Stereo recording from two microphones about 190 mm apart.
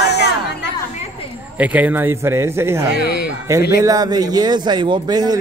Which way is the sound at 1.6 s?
10° right (ahead or behind).